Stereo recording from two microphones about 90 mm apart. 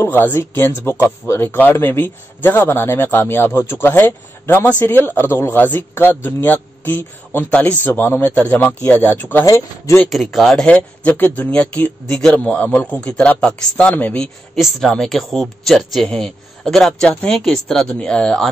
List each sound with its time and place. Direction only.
0.0 s speech: 25° left (ahead or behind)
10.0 s speech: centre (ahead or behind)